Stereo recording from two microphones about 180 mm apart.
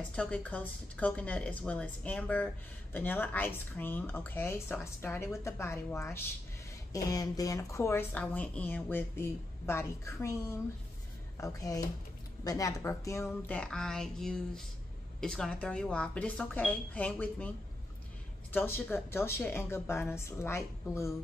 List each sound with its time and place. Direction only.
0.1 s a woman's voice: 5° left (ahead or behind)
18.5 s a woman's voice: 10° left (ahead or behind)